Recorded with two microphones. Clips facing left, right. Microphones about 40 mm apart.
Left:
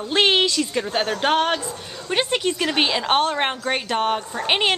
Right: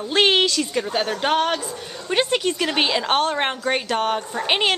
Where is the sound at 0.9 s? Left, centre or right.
Left.